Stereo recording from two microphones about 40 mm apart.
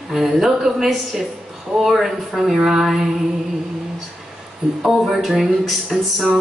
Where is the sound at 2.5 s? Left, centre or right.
Centre.